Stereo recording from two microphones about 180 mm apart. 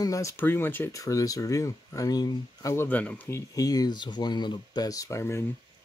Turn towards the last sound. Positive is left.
turn(degrees=15)  # may be behind; listen again after turning